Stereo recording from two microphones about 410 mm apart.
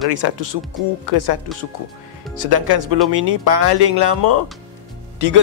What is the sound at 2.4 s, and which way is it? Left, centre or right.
Speech, right.